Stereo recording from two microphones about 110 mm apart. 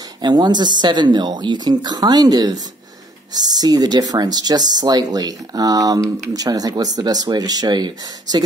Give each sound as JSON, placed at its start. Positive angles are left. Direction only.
{"t": 0.2, "sound": "speech", "side_deg": -40}